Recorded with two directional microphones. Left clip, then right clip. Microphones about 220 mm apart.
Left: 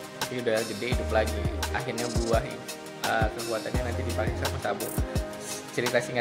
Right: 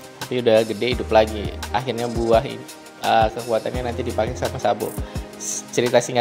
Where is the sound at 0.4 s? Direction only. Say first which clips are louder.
Right 12 dB; 30° right (ahead or behind).